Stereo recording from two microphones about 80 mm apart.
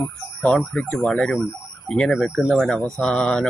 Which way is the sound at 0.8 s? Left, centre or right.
Centre.